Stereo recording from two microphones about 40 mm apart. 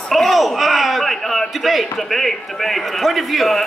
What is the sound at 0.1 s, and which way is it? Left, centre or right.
A man's voice, centre.